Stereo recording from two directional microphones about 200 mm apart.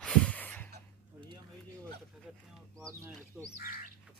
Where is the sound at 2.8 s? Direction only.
15° right (ahead or behind).